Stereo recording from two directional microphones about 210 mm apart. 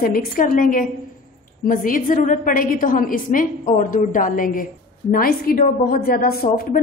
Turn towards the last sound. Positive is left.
turn(degrees=45)  # may be behind; listen again after turning